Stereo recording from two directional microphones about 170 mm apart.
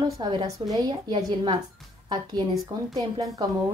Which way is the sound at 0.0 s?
25° right (ahead or behind).